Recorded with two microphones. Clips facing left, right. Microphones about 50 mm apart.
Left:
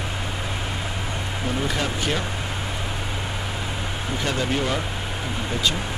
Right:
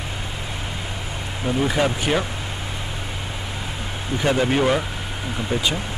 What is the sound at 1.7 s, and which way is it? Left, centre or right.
Speech, centre.